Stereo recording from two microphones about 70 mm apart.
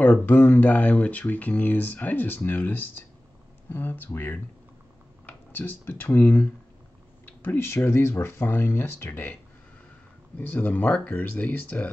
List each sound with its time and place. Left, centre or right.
0.2 s speech: left